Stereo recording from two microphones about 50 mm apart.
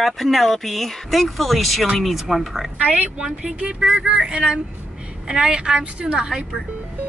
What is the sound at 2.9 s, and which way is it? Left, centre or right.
Speech, right.